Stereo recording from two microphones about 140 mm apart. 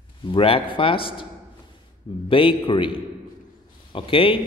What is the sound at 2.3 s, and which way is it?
A man's voice, 40° left (ahead or behind).